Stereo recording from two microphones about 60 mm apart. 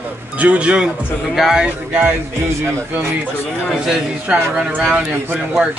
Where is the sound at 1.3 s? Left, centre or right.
Centre.